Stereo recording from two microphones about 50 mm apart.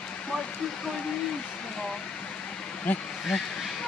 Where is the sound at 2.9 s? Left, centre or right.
Left.